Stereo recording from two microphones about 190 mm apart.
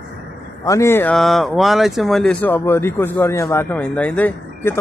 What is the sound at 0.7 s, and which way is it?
Speech, 15° left (ahead or behind).